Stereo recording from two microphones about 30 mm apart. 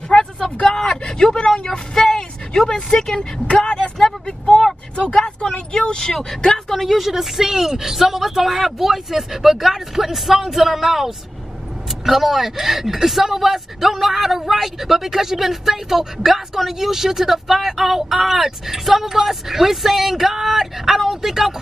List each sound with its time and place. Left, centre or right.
0.1 s a sound: left
1.1 s speech: left
2.0 s vehicle: centre
2.7 s speech: centre
3.2 s speech: left
5.1 s speech: left
6.7 s speech: centre
7.0 s speech: centre